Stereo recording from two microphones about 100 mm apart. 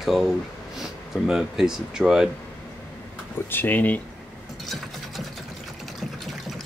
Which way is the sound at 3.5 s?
20° left (ahead or behind).